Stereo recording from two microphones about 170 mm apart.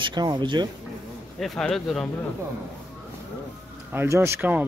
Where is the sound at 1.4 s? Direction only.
Centre (ahead or behind).